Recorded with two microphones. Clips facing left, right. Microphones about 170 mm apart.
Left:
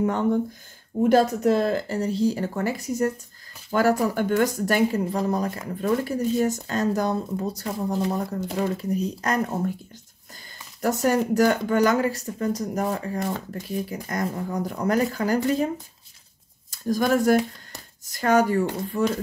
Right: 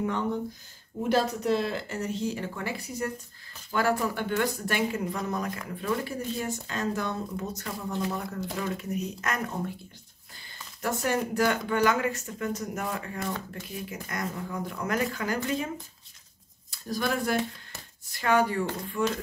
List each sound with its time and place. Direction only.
0.0 s speech: 45° left (ahead or behind)
10.8 s speech: 40° left (ahead or behind)
16.7 s speech: 45° left (ahead or behind)